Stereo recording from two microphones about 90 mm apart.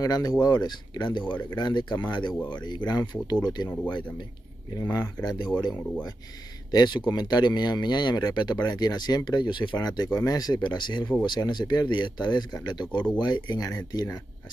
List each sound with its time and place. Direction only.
0.0 s speech: 45° left (ahead or behind)
4.7 s speech: 45° left (ahead or behind)
6.7 s speech: 50° left (ahead or behind)